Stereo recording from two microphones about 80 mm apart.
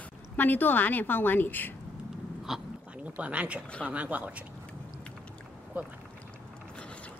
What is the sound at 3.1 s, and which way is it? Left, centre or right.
Speech, centre.